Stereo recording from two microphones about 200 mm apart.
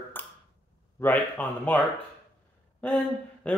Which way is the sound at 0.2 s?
10° left (ahead or behind).